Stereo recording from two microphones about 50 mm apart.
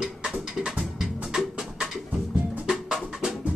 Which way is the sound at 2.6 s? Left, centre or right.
Centre.